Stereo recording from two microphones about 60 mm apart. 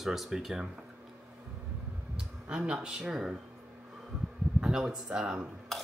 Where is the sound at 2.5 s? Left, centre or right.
Centre.